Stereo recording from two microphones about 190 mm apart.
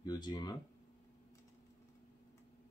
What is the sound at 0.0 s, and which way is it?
Speech, 20° left (ahead or behind).